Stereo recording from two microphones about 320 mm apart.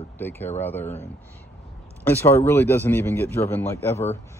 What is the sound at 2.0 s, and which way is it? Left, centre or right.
Speech, centre.